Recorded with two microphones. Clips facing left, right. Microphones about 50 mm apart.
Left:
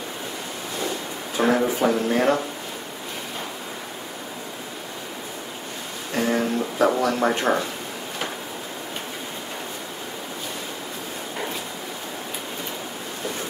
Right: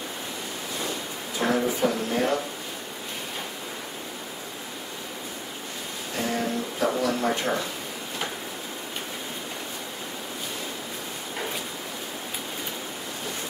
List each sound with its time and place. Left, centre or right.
1.4 s speech: left
6.1 s a sound: left
7.2 s speech: left